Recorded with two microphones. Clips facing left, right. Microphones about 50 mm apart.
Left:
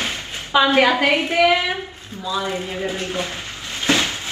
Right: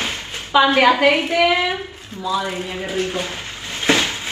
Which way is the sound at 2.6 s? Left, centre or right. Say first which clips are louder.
Right 2 dB; right.